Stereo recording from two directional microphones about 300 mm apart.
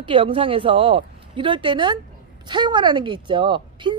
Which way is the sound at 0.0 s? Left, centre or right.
Centre.